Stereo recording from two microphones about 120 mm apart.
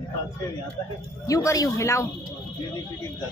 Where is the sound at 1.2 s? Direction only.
30° left (ahead or behind).